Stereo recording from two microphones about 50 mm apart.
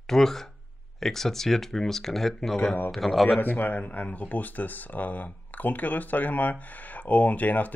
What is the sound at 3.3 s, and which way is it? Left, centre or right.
Speech, left.